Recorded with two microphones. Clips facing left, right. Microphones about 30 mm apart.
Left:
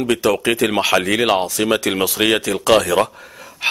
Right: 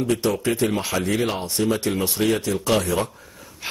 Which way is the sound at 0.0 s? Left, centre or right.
Left.